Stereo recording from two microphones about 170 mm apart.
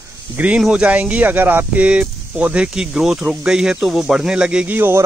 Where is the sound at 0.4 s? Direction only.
5° right (ahead or behind).